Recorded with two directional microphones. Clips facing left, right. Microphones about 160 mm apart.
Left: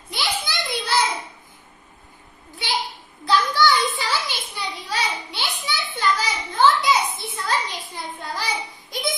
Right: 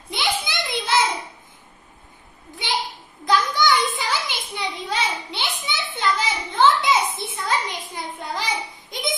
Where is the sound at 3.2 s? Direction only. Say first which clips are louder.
Left 1 dB; 20° right (ahead or behind).